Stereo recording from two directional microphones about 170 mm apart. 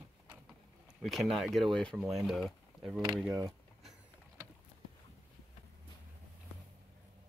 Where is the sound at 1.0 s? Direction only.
Centre (ahead or behind).